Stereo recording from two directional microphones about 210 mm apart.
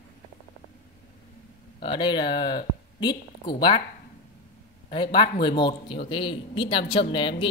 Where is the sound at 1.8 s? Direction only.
20° left (ahead or behind).